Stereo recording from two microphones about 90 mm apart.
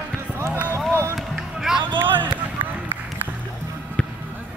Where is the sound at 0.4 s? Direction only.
25° right (ahead or behind).